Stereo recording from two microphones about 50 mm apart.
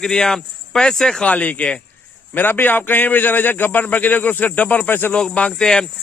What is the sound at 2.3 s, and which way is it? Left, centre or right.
A man's voice, left.